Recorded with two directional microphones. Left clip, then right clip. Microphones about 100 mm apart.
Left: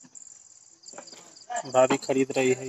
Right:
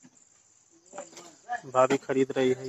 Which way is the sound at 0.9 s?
25° right (ahead or behind).